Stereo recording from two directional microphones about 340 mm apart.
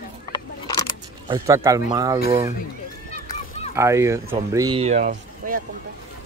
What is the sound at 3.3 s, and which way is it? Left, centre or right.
Honk, centre.